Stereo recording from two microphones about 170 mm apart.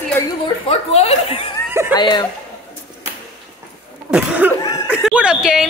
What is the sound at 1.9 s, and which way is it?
Speech, 25° left (ahead or behind).